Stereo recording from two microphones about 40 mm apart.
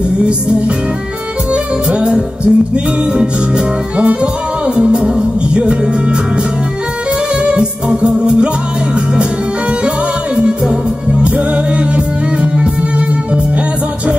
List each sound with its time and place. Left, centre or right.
1.5 s music: right
7.4 s music: right
10.3 s music: right
11.2 s music: right